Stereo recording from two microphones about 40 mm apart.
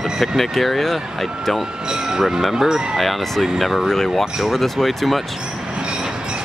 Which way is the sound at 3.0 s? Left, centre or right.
Centre.